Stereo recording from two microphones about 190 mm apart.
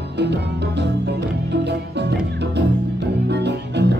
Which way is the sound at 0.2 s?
65° right (ahead or behind).